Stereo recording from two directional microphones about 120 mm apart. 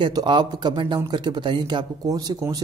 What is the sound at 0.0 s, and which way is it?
A man's voice, 40° right (ahead or behind).